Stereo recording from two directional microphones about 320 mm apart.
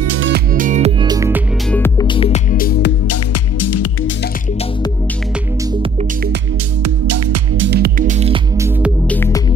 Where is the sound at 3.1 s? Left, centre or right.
Left.